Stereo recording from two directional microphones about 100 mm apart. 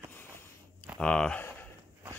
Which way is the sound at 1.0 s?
10° left (ahead or behind).